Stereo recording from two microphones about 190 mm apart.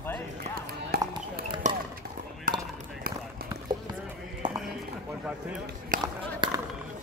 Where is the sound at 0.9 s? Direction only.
55° right (ahead or behind).